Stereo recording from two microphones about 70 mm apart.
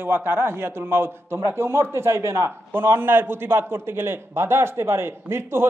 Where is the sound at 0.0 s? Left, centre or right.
Right.